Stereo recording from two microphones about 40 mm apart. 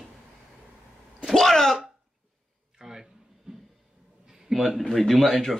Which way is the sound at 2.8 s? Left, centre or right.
Centre.